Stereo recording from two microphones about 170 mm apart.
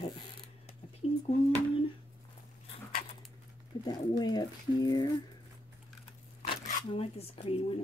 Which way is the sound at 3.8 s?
25° left (ahead or behind).